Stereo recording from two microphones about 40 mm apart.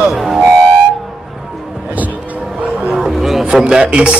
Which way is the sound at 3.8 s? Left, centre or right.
Right.